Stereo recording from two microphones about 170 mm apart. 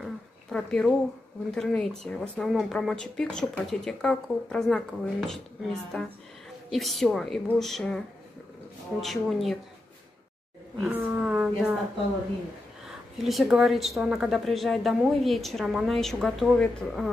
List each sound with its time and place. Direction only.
0.0 s a sound: 5° left (ahead or behind)
1.5 s speech: 5° left (ahead or behind)
9.0 s speech: centre (ahead or behind)
10.8 s speech: 10° right (ahead or behind)
12.8 s speech: centre (ahead or behind)